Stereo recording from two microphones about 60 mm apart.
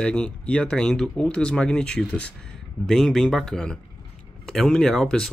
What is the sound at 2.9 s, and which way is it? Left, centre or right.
Speech, centre.